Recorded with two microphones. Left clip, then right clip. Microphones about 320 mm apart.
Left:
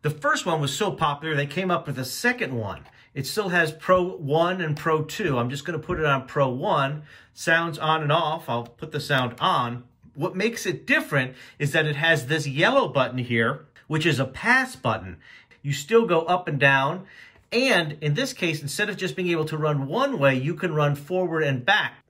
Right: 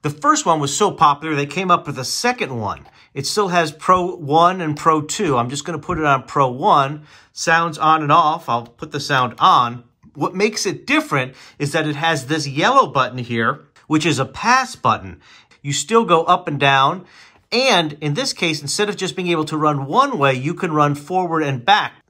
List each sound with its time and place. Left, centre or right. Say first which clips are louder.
0.2 s speech: right 9 dB; centre